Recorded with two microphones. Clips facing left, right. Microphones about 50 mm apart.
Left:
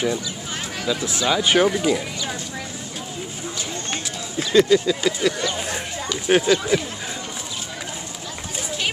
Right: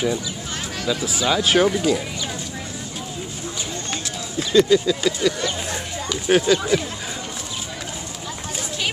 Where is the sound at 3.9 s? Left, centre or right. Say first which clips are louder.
Even; left.